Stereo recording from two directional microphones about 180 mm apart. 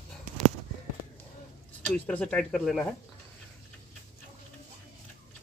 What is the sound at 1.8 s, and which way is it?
Speech, 10° left (ahead or behind).